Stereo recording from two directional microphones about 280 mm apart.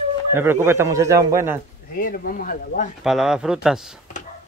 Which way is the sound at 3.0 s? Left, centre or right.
Centre.